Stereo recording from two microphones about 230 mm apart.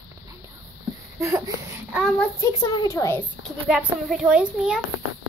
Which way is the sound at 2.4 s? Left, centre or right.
Centre.